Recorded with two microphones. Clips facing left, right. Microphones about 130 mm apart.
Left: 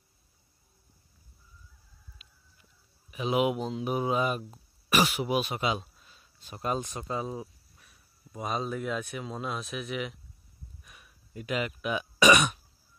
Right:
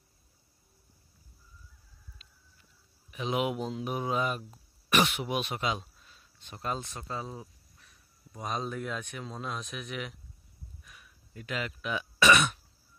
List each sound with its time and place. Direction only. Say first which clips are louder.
2.2 s chicken: even; 10° left (ahead or behind)
3.1 s speech: left 4 dB; 5° left (ahead or behind)
10.9 s speech: left 1 dB; 20° left (ahead or behind)